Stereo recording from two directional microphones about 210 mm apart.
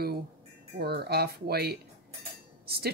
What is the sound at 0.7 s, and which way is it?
Speech, 50° right (ahead or behind).